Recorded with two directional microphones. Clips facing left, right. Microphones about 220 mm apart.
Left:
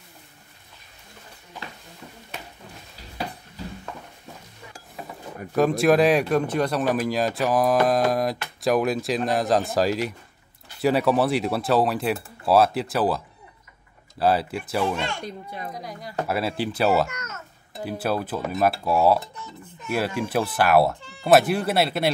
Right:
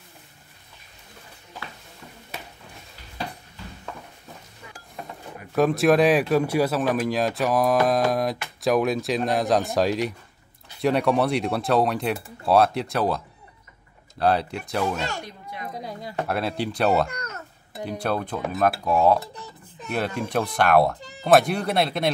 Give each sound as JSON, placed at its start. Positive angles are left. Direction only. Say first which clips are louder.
{"t": 5.5, "sound": "speech", "louder": "even", "side_deg": 0}
{"t": 15.8, "sound": "a sound", "louder": "right 2 dB", "side_deg": -25}
{"t": 16.3, "sound": "speech", "louder": "left 1 dB", "side_deg": 5}
{"t": 17.1, "sound": "a child's voice", "louder": "right 2 dB", "side_deg": -35}
{"t": 17.7, "sound": "speech", "louder": "left 1 dB", "side_deg": 5}
{"t": 19.3, "sound": "a sound", "louder": "left 1 dB", "side_deg": -35}
{"t": 19.9, "sound": "speech", "louder": "left 1 dB", "side_deg": 5}